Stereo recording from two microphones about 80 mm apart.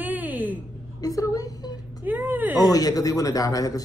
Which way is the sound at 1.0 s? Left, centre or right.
Left.